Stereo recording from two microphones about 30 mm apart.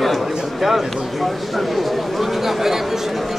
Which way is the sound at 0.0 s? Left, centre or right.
Centre.